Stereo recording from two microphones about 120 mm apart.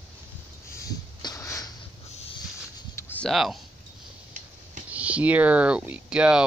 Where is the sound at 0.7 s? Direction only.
30° left (ahead or behind).